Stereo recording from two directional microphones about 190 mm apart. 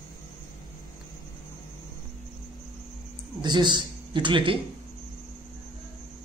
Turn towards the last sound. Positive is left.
turn(degrees=-25)  # may be behind; listen again after turning